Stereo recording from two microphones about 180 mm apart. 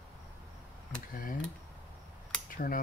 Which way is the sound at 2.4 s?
50° left (ahead or behind).